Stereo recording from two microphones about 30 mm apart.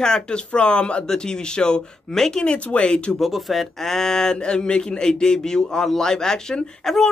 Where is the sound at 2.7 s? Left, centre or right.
Left.